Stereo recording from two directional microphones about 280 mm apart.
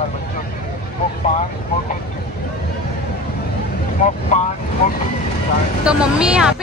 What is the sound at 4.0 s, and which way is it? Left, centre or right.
Speech, left.